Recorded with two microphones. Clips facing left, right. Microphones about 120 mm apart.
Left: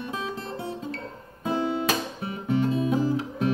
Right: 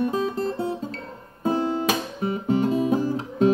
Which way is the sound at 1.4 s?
40° right (ahead or behind).